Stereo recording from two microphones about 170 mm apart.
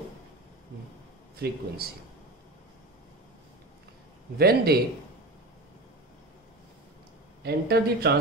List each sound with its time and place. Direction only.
1.3 s a man's voice: 65° right (ahead or behind)
4.4 s a man's voice: 65° right (ahead or behind)
7.4 s speech: 70° right (ahead or behind)